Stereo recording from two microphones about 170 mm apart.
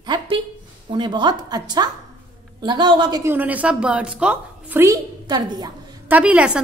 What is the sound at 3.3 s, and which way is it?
A woman's voice, 10° right (ahead or behind).